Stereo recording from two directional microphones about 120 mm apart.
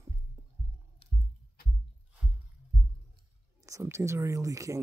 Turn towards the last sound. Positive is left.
turn(degrees=-25)  # may be behind; listen again after turning